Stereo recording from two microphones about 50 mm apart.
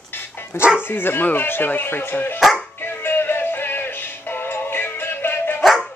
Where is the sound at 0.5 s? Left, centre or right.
Left.